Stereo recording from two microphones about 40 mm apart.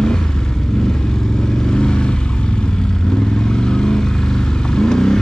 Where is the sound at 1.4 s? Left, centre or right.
Centre.